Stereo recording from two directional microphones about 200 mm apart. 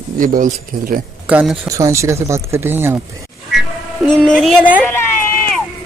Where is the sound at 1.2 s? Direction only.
5° right (ahead or behind).